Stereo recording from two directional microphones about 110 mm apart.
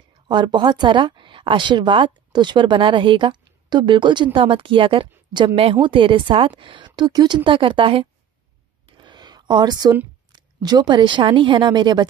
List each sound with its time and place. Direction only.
0.3 s speech: 45° right (ahead or behind)
8.9 s a sound: 45° right (ahead or behind)
10.3 s speech: 40° right (ahead or behind)